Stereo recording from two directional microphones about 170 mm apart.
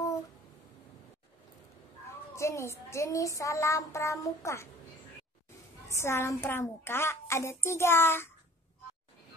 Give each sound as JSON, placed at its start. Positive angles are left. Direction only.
{"t": 2.3, "sound": "a woman's voice", "side_deg": 15}
{"t": 5.9, "sound": "a woman's voice", "side_deg": 15}